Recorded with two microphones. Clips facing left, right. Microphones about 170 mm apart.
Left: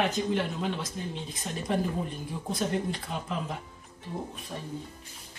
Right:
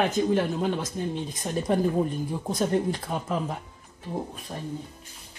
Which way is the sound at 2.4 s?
45° right (ahead or behind).